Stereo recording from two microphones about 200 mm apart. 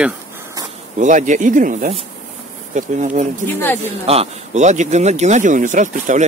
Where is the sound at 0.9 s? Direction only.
40° right (ahead or behind).